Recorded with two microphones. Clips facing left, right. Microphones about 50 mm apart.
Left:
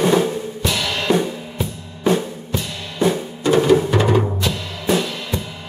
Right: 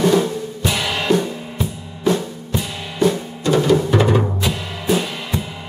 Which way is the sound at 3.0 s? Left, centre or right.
Centre.